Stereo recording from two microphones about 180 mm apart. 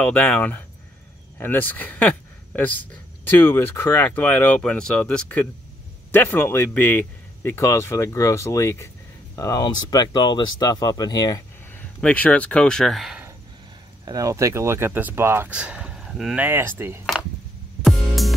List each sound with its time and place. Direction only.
0.0 s speech: 5° left (ahead or behind)
12.0 s speech: 10° left (ahead or behind)
14.0 s speech: 20° right (ahead or behind)
17.8 s music: centre (ahead or behind)